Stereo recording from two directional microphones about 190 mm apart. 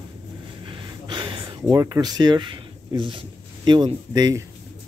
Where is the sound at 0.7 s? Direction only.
25° right (ahead or behind).